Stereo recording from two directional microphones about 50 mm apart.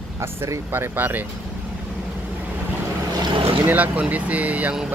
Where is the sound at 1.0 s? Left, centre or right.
Right.